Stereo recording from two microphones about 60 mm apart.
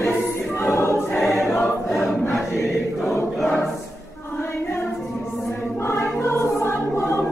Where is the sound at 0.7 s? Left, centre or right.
Left.